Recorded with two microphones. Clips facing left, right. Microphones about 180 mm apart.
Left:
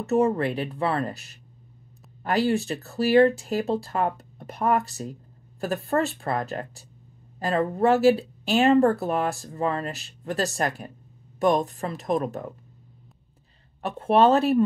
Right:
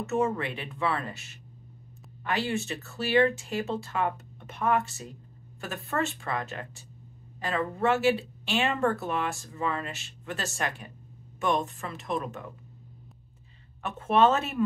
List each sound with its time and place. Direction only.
0.0 s speech: 35° left (ahead or behind)
13.8 s speech: 35° left (ahead or behind)